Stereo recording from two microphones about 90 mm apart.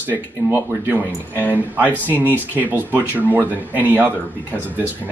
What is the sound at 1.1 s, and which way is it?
Speech, 20° left (ahead or behind).